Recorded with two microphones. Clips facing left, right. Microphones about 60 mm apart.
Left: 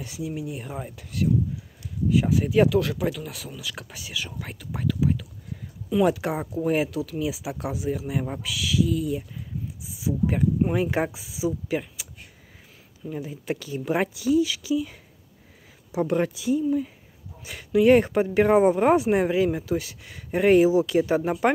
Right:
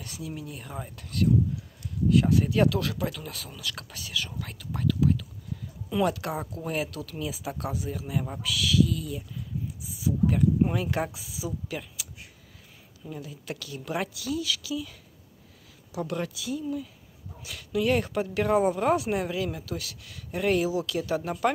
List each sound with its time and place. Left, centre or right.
0.0 s speech: centre
13.1 s speech: left